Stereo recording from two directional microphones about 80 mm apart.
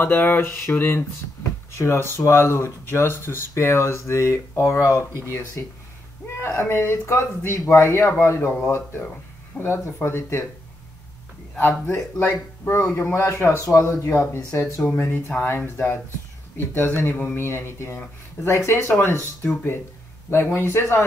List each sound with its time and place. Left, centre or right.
0.0 s speech: left
11.9 s speech: left
20.2 s speech: left